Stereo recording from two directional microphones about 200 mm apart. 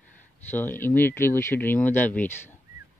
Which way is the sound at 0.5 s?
10° left (ahead or behind).